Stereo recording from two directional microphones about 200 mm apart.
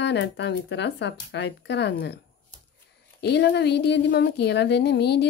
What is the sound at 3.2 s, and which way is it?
Speech, 60° left (ahead or behind).